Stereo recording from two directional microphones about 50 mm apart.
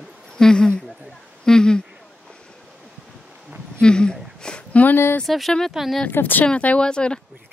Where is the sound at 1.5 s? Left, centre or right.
Centre.